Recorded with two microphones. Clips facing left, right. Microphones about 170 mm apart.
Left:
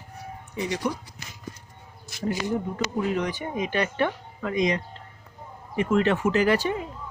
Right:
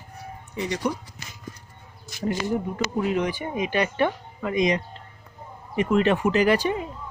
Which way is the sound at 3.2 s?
10° right (ahead or behind).